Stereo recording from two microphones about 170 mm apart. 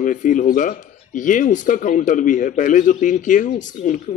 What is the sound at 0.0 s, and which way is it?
A man's voice, 50° left (ahead or behind).